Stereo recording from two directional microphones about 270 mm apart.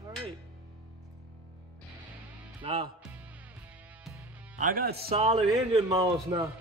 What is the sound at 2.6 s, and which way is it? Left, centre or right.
Music, centre.